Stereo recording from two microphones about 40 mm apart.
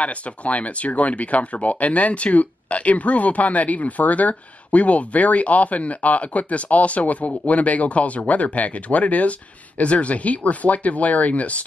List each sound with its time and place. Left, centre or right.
0.0 s speech: left